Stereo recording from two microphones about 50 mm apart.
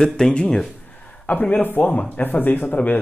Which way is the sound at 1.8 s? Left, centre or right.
Left.